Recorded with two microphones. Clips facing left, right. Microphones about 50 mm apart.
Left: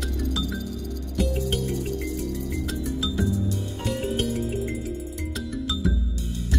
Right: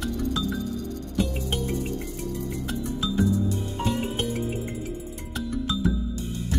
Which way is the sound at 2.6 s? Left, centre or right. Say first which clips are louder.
Right 1 dB; right.